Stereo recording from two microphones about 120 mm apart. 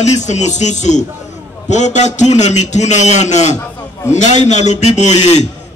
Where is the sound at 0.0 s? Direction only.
75° left (ahead or behind).